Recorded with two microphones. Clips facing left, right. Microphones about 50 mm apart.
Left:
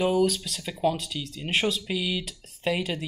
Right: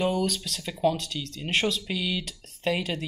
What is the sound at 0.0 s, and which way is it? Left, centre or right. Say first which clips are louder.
Speech: left 3 dB; centre.